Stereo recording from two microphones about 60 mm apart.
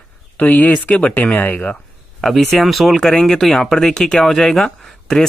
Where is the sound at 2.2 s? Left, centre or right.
Centre.